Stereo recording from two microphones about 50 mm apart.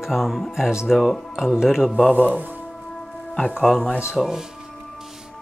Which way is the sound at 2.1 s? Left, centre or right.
Right.